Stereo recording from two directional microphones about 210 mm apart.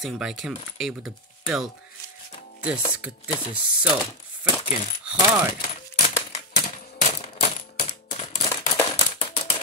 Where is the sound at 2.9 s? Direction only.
5° right (ahead or behind).